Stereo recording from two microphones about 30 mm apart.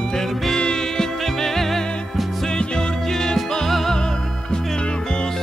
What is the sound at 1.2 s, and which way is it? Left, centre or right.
Music, centre.